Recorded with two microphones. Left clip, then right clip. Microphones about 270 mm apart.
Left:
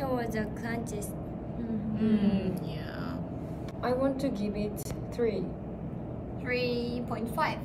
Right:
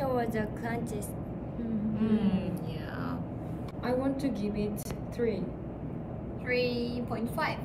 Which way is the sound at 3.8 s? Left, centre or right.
Centre.